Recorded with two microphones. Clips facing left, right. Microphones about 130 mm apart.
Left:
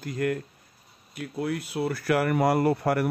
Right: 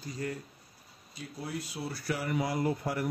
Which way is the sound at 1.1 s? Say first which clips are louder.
Left 9 dB; 80° left.